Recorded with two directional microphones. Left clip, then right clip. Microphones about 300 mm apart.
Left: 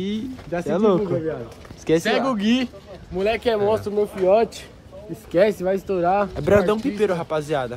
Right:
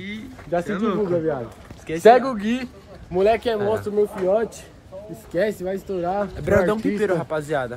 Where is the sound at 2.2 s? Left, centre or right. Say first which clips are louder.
Left 1 dB; centre.